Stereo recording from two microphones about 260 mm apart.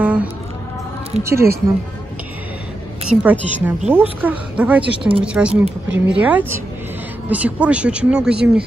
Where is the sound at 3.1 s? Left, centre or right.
Centre.